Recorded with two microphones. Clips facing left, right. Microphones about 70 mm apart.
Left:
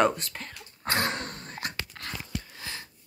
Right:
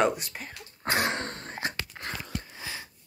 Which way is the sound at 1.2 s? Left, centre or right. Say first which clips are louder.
Right 3 dB; right.